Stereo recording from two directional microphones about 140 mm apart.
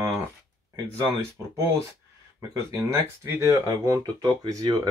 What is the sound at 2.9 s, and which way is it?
Speech, 20° right (ahead or behind).